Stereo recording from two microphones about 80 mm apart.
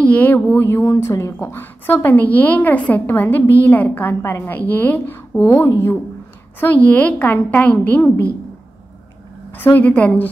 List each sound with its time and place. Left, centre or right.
0.0 s a woman's voice: centre
4.1 s a woman's voice: left
9.6 s a woman's voice: left